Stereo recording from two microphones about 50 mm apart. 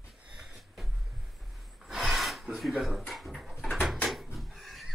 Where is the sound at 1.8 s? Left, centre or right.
Centre.